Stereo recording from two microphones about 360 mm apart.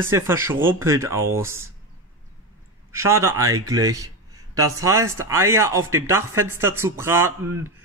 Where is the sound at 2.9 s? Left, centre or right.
Centre.